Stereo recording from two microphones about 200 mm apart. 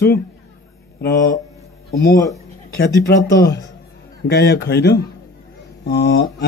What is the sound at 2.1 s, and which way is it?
Speech, 15° left (ahead or behind).